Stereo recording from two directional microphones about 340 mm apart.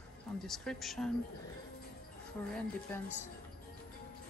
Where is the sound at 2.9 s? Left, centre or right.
Centre.